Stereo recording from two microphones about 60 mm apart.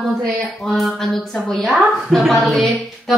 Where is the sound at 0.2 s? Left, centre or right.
Centre.